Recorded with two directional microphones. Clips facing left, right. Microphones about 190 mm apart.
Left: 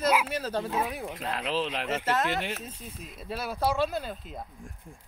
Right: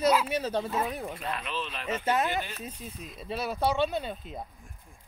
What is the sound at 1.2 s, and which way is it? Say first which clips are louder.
Speech: left 4 dB; 90° left.